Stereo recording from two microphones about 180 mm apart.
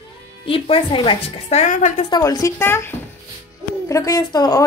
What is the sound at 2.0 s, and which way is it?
A woman's voice, 20° left (ahead or behind).